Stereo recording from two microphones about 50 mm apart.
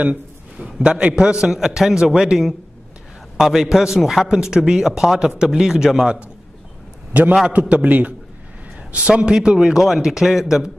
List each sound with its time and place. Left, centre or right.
0.0 s a sound: right
0.8 s a man's voice: right
7.4 s a man's voice: right; by 10.4 s centre